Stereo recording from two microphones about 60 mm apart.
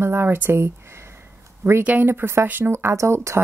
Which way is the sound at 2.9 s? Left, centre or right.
Right.